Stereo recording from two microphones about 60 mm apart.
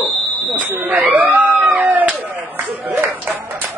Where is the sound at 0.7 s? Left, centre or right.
Right.